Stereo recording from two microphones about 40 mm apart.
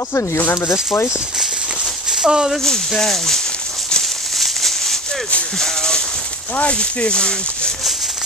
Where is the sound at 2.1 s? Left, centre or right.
Centre.